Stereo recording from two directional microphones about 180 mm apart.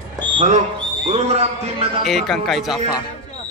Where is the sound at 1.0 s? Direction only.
35° right (ahead or behind).